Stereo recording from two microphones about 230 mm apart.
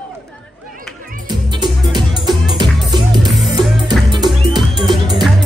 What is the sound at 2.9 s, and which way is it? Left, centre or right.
Music, centre.